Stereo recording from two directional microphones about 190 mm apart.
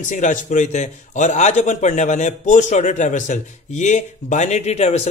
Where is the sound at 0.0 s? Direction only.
40° left (ahead or behind).